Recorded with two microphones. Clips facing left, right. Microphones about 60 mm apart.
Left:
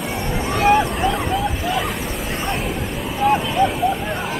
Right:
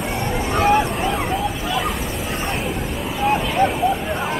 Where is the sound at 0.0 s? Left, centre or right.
Centre.